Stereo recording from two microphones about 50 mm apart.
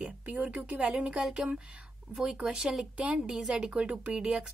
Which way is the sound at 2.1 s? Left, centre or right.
Right.